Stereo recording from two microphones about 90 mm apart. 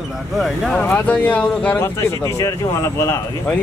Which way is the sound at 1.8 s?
30° left (ahead or behind).